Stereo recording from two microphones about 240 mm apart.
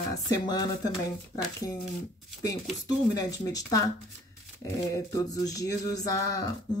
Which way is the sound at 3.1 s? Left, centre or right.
Centre.